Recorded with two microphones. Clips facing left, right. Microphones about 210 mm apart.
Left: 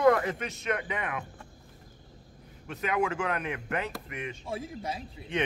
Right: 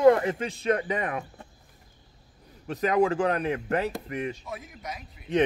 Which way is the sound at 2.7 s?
35° right (ahead or behind).